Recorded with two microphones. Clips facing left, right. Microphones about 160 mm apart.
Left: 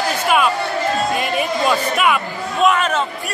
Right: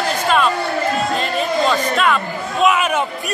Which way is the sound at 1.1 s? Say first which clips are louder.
Right 1 dB; 10° left (ahead or behind).